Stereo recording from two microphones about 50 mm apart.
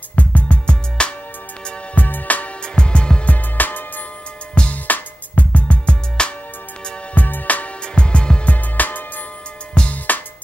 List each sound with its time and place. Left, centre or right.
0.1 s music: left
2.0 s music: left
2.6 s music: centre; by 3.8 s left
4.8 s music: left
7.2 s music: left
7.8 s music: centre
8.5 s music: left
9.8 s music: centre